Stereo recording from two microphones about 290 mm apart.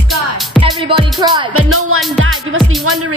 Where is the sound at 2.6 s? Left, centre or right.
Centre.